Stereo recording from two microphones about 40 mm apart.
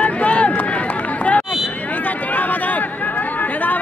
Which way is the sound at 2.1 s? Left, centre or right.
Left.